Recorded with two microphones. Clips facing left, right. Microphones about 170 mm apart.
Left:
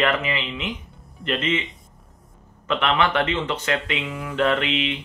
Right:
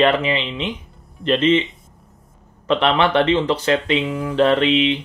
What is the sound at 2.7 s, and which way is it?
Speech, 30° right (ahead or behind).